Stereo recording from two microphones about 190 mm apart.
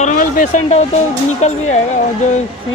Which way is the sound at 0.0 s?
40° left (ahead or behind).